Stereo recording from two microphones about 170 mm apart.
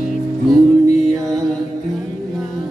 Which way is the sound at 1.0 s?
Centre (ahead or behind).